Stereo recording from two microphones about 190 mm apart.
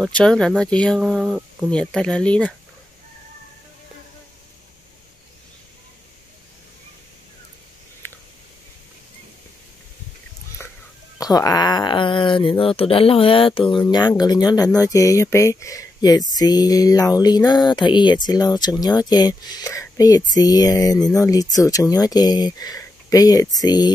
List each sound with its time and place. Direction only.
0.0 s speech: 5° left (ahead or behind)
8.0 s a sound: 10° left (ahead or behind)
11.1 s speech: 20° left (ahead or behind)